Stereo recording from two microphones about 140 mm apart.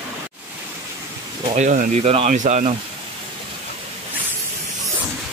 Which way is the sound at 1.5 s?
65° right (ahead or behind).